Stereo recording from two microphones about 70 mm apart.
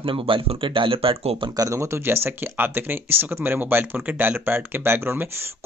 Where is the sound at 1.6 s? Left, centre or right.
Right.